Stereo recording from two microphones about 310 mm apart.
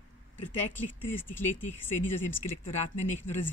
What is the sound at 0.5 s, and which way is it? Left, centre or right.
Speech, centre.